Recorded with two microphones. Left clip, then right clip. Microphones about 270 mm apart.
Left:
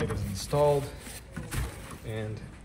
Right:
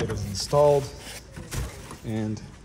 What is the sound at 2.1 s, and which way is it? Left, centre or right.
Speech, right.